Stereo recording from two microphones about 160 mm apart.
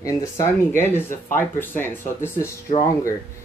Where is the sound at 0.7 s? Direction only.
15° left (ahead or behind).